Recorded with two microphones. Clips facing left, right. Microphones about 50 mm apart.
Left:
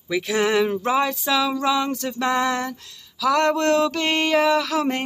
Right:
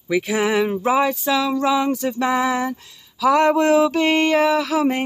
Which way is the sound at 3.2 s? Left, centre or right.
Centre.